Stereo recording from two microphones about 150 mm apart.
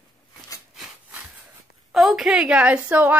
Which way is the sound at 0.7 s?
5° right (ahead or behind).